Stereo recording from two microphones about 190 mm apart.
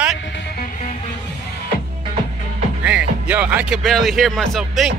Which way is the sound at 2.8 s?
5° right (ahead or behind).